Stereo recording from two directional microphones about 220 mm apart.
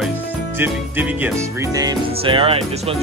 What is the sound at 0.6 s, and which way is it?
Music, 10° right (ahead or behind).